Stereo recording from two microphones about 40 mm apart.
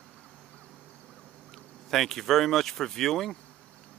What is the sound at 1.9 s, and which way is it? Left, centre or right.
Speech, centre.